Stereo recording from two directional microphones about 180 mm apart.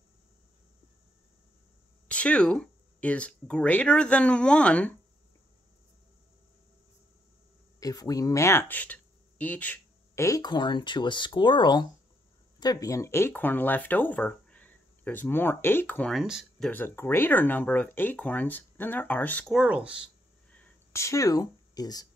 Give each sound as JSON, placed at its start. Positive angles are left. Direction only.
{"t": 2.0, "sound": "speech", "side_deg": 5}
{"t": 7.8, "sound": "speech", "side_deg": 20}
{"t": 19.5, "sound": "speech", "side_deg": -5}
{"t": 20.6, "sound": "speech", "side_deg": 15}